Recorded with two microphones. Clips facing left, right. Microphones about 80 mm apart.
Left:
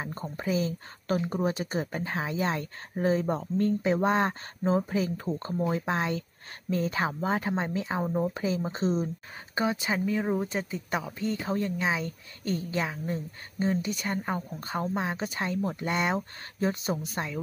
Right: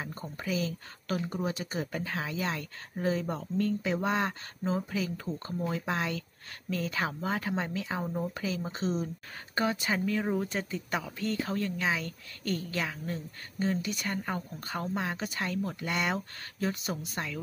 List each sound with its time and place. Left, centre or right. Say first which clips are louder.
0.0 s speech: left 4 dB; left
9.6 s speech: left 2 dB; centre